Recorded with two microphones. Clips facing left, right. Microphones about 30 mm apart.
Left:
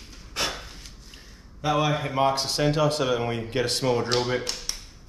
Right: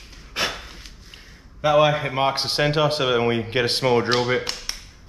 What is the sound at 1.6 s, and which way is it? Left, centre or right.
Speech, right.